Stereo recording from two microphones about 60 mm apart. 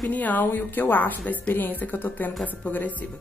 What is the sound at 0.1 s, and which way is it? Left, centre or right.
A woman's voice, left.